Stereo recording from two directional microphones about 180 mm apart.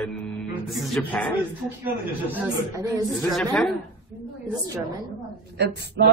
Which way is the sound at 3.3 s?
Centre (ahead or behind).